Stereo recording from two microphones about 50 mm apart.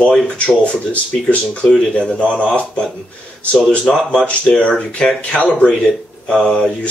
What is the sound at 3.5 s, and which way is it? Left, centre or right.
Speech, left.